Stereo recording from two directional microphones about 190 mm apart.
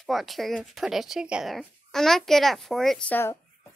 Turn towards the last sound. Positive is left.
turn(degrees=10)  # may be behind; listen again after turning